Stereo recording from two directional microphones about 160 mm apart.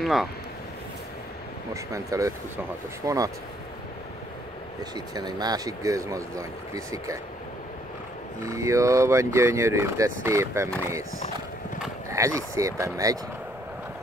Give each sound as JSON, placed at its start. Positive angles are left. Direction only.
{"t": 0.0, "sound": "speech", "side_deg": 0}
{"t": 1.7, "sound": "speech", "side_deg": -20}
{"t": 4.9, "sound": "speech", "side_deg": -25}
{"t": 8.4, "sound": "speech", "side_deg": -20}
{"t": 12.1, "sound": "speech", "side_deg": -20}